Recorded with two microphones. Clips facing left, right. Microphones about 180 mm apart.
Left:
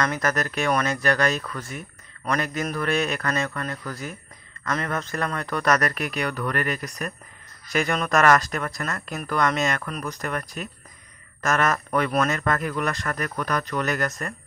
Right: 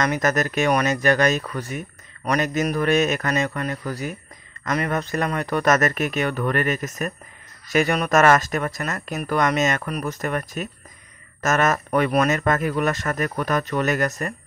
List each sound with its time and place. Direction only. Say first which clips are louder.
0.0 s a man's voice: right 3 dB; 20° right (ahead or behind)